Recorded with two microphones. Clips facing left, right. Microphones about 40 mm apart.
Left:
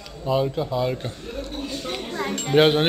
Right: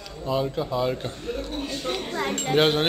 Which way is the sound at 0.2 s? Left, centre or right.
Centre.